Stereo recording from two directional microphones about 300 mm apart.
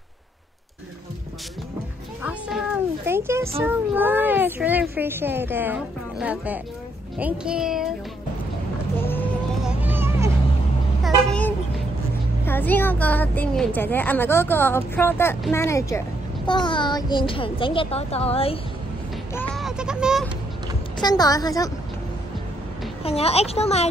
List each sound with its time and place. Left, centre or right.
2.2 s a child's voice: centre
7.2 s music: centre
8.9 s vehicle: centre
9.8 s a sound: centre
11.2 s a sound: centre
12.4 s a woman's voice: centre
19.3 s a sound: centre
21.0 s a woman's voice: centre
23.0 s speech: centre